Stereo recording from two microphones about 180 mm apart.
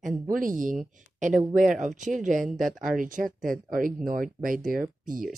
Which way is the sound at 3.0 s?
50° right (ahead or behind).